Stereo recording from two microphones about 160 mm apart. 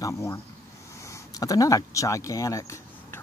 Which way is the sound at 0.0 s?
20° left (ahead or behind).